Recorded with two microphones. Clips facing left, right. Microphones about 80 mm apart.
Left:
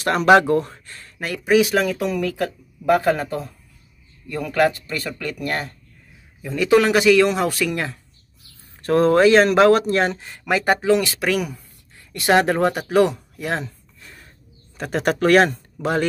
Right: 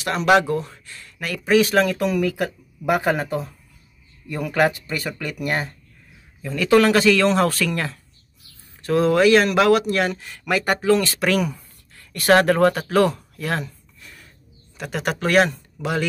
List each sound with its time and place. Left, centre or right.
0.0 s speech: left
0.7 s a sound: left
1.4 s speech: centre
2.2 s speech: centre
6.4 s speech: centre
8.8 s speech: left; by 11.6 s centre
11.9 s a sound: centre
14.8 s speech: left